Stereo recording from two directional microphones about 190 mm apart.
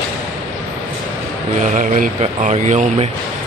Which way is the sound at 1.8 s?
45° right (ahead or behind).